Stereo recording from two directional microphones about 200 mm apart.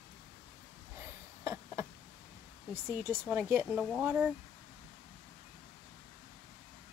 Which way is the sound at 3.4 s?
Centre (ahead or behind).